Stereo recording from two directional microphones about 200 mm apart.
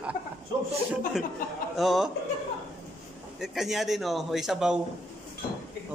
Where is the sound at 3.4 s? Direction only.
Centre (ahead or behind).